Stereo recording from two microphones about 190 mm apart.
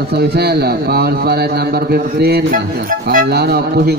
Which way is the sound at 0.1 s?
55° right (ahead or behind).